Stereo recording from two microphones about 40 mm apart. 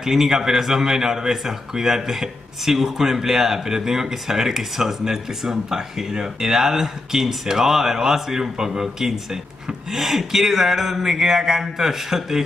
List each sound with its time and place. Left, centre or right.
0.0 s a man's voice: centre